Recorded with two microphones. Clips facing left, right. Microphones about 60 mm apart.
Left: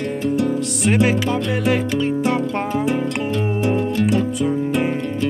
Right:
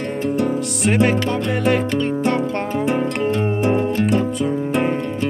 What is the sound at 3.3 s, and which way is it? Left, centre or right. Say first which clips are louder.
Music: right 2 dB; right.